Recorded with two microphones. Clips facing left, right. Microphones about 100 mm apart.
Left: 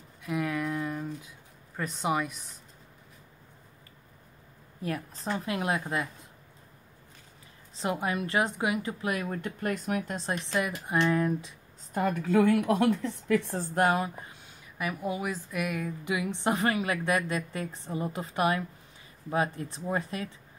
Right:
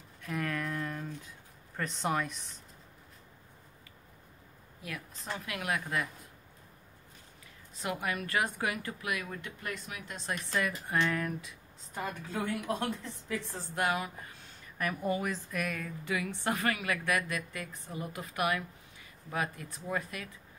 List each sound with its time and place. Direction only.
0.2 s a sound: 5° left (ahead or behind)
1.8 s speech: 5° left (ahead or behind)
4.8 s speech: 40° left (ahead or behind)
7.8 s a woman's voice: 25° left (ahead or behind)
9.0 s speech: 35° left (ahead or behind)
10.4 s a woman's voice: 20° left (ahead or behind)
11.9 s a woman's voice: 55° left (ahead or behind)
13.8 s speech: 35° left (ahead or behind)
14.8 s a woman's voice: 5° left (ahead or behind); by 20.2 s 30° left (ahead or behind)